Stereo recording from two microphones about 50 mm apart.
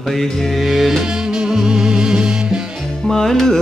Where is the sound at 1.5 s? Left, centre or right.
Centre.